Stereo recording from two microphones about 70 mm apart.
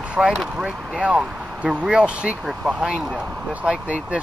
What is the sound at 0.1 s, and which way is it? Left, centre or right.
Speech, centre.